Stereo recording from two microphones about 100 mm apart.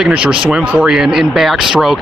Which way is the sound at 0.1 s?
10° right (ahead or behind).